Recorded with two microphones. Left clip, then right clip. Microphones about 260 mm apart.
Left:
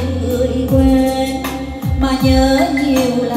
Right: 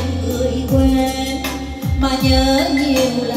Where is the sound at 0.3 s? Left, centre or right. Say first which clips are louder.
Left 3 dB; centre.